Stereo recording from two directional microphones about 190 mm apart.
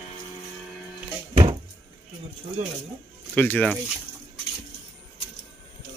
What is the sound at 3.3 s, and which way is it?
Speech, 10° left (ahead or behind).